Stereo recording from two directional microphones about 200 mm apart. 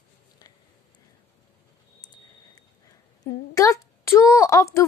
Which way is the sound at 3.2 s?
15° left (ahead or behind).